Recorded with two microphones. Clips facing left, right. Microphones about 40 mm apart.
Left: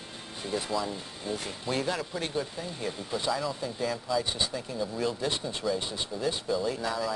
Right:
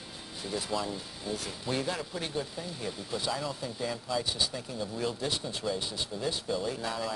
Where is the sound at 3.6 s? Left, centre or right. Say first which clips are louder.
Left 3 dB; centre.